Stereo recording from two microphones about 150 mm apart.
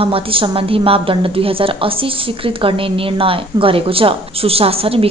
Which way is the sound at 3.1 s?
35° right (ahead or behind).